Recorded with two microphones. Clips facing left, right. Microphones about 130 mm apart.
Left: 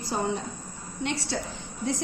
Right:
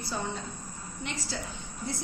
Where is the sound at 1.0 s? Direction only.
75° left (ahead or behind).